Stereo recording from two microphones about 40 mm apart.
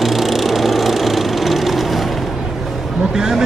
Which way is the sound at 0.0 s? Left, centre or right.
Centre.